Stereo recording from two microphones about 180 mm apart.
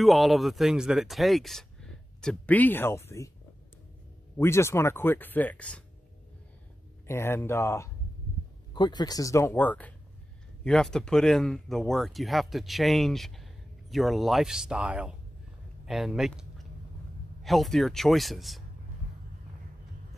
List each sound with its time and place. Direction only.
0.0 s speech: centre (ahead or behind); by 3.3 s 15° left (ahead or behind)
4.4 s speech: 15° left (ahead or behind)
7.1 s speech: 15° left (ahead or behind)